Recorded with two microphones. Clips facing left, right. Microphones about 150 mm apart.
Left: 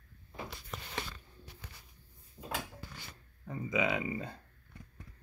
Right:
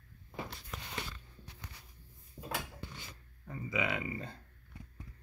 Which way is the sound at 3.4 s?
20° left (ahead or behind).